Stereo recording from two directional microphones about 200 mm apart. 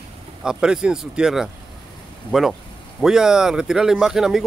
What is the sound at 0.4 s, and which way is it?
Speech, 5° right (ahead or behind).